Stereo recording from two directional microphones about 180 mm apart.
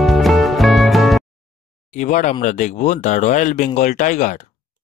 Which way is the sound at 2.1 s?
45° left (ahead or behind).